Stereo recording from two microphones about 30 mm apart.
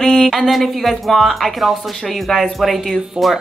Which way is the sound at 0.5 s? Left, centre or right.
Centre.